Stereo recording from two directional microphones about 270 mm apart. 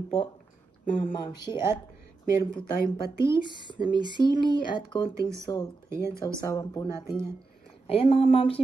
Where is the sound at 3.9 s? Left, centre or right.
Centre.